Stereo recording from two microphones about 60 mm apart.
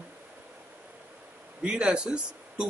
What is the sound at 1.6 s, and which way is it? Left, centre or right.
Speech, centre.